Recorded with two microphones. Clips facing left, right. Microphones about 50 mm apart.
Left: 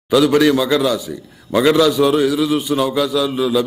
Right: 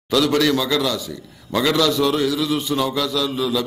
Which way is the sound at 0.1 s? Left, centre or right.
Centre.